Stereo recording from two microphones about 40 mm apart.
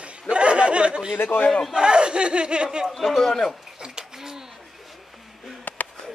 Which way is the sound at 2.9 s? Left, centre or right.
Centre.